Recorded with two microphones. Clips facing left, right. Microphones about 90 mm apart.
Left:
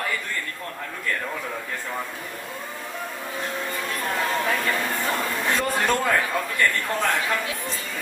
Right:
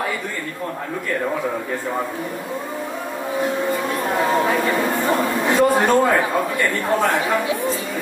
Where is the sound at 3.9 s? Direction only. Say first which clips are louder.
Right 5 dB; 20° right (ahead or behind).